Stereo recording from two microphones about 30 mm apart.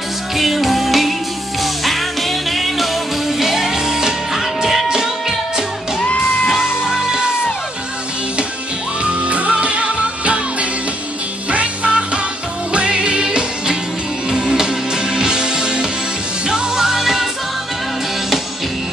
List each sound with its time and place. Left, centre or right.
0.4 s music: centre; by 5.1 s right
6.5 s music: centre
9.0 s music: right; by 17.3 s centre